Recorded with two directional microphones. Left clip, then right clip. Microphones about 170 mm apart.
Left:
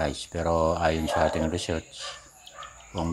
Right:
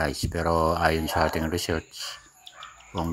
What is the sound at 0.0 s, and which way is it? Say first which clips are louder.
Speech: right 1 dB; 15° right (ahead or behind).